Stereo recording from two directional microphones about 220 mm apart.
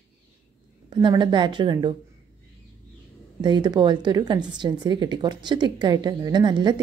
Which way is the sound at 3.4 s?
20° right (ahead or behind).